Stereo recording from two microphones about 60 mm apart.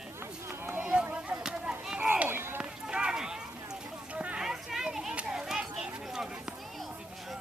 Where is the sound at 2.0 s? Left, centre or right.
Right.